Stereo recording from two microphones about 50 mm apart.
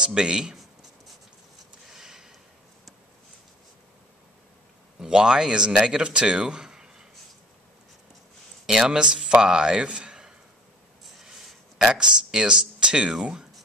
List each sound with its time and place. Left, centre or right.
0.0 s speech: centre
1.9 s a sound: centre
5.0 s speech: centre
8.6 s speech: centre
11.1 s a sound: centre
12.0 s speech: centre